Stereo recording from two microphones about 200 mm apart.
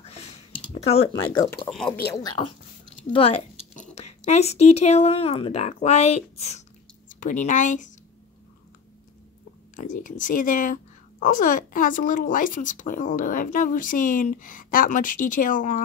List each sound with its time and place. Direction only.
0.8 s speech: 30° left (ahead or behind)
1.7 s speech: centre (ahead or behind)
2.2 s speech: 25° left (ahead or behind)
3.1 s a sound: 30° left (ahead or behind)
3.9 s speech: 35° left (ahead or behind)
9.8 s speech: 40° left (ahead or behind)